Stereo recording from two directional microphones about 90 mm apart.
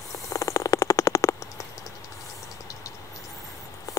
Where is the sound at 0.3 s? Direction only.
35° left (ahead or behind).